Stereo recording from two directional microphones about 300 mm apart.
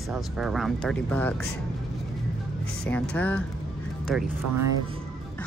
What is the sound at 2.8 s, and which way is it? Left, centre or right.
Speech, centre.